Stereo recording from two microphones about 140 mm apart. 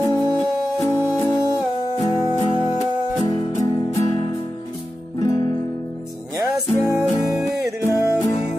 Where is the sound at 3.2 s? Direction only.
40° left (ahead or behind).